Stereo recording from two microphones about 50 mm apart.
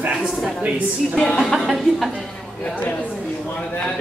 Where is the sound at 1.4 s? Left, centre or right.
Centre.